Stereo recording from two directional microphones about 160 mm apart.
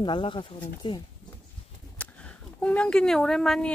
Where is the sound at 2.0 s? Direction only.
10° left (ahead or behind).